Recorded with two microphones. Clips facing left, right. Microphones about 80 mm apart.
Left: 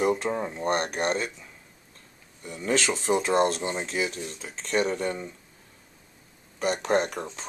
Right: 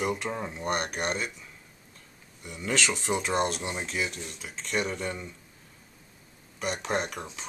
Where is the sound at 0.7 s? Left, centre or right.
Left.